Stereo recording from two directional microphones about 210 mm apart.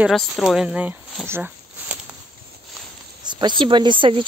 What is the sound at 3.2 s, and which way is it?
Speech, 20° right (ahead or behind).